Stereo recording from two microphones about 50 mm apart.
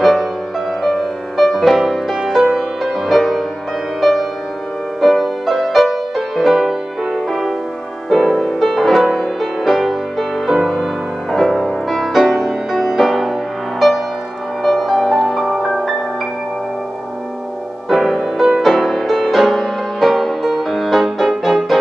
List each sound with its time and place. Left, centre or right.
0.0 s music: centre
8.1 s music: centre
17.8 s music: centre